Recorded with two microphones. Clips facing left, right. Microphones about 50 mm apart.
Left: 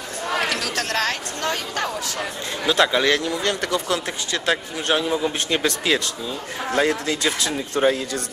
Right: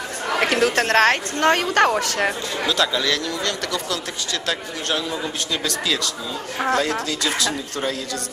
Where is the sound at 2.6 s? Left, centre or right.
Left.